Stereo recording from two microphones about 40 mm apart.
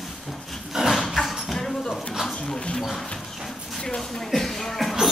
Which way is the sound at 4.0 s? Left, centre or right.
Centre.